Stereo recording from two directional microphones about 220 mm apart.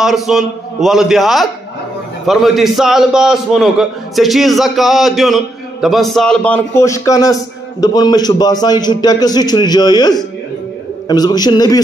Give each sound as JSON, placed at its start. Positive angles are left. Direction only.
{"t": 0.0, "sound": "a man's voice", "side_deg": 0}